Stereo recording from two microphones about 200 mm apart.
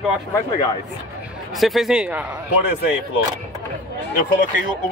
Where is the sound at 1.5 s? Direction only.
Centre (ahead or behind).